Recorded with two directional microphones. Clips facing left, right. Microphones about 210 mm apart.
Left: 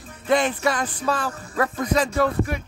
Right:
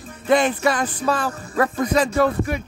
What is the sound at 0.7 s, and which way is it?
Speech, 5° right (ahead or behind).